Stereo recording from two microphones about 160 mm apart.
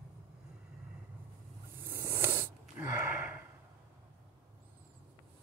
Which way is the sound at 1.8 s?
15° right (ahead or behind).